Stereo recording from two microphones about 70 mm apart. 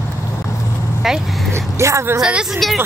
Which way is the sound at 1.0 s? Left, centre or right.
Centre.